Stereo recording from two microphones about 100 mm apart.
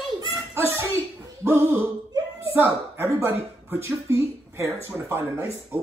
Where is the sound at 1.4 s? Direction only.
25° right (ahead or behind).